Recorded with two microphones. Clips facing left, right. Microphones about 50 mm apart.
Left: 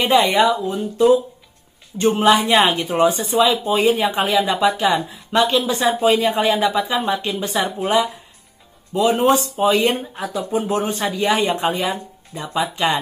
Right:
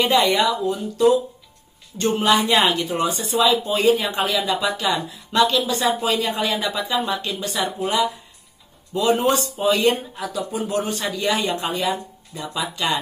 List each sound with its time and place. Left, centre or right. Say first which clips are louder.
0.0 s speech: left 3 dB; left
2.0 s speech: left 4 dB; centre
7.0 s speech: left 3 dB; left
10.1 s speech: left 4 dB; left